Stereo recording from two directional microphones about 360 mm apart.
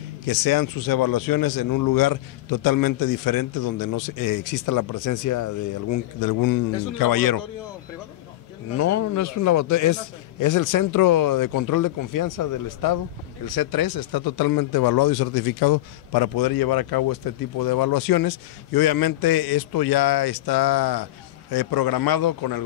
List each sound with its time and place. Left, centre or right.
0.3 s a man's voice: left
8.7 s a man's voice: left